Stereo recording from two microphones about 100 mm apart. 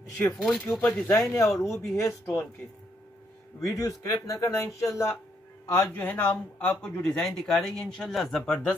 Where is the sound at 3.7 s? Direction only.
35° left (ahead or behind); by 8.4 s centre (ahead or behind).